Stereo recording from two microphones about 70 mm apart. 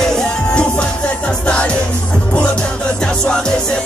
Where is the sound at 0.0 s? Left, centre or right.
Centre.